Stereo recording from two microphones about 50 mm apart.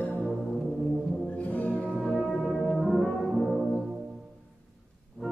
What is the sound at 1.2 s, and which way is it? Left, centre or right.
Brass instrument, left.